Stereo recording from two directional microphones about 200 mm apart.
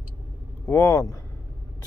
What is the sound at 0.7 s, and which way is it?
Speech, 15° left (ahead or behind).